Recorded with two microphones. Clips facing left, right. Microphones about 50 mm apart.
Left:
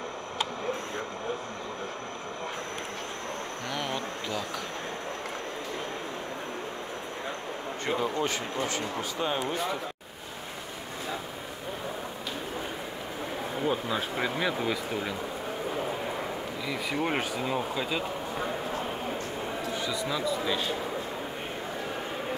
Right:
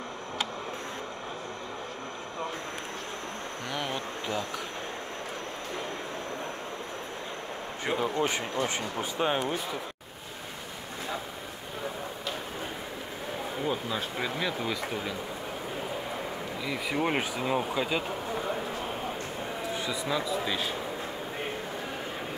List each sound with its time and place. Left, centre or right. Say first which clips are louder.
3.7 s a sound: even; centre
7.8 s a man's voice: right 1 dB; centre
8.6 s speech: even; right
13.7 s speech: left 3 dB; centre
16.6 s speech: right 1 dB; centre
19.8 s a man's voice: even; centre